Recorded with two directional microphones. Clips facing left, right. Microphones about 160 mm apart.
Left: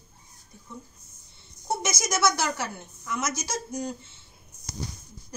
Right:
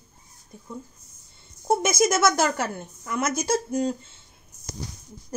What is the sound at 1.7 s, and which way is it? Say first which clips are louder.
A woman's voice: right 8 dB; 55° right (ahead or behind).